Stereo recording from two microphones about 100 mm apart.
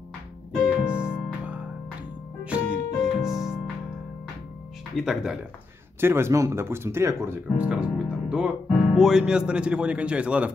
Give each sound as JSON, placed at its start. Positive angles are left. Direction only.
{"t": 0.6, "sound": "piano", "side_deg": -5}
{"t": 1.4, "sound": "music", "side_deg": -15}
{"t": 4.9, "sound": "speech", "side_deg": -5}
{"t": 5.9, "sound": "speech", "side_deg": -25}
{"t": 7.5, "sound": "speech", "side_deg": -10}